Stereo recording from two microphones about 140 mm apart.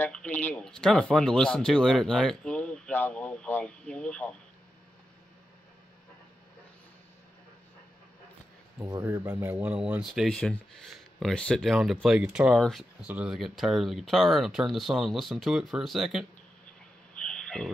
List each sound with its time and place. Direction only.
0.0 s speech: 10° left (ahead or behind)
8.7 s speech: 25° right (ahead or behind)
9.0 s speech: 15° right (ahead or behind)
10.2 s speech: 5° left (ahead or behind)
13.0 s speech: 10° right (ahead or behind)
17.2 s frog: 5° left (ahead or behind)